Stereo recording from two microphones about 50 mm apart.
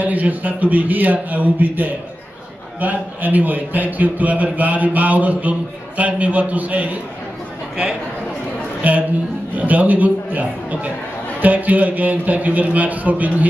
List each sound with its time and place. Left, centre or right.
0.0 s a man's voice: right
8.8 s a man's voice: right